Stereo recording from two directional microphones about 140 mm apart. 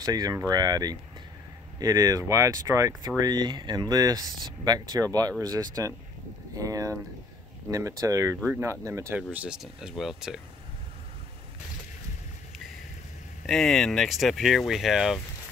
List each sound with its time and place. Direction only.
0.0 s speech: 25° right (ahead or behind); by 10.4 s 5° right (ahead or behind)
13.5 s speech: centre (ahead or behind)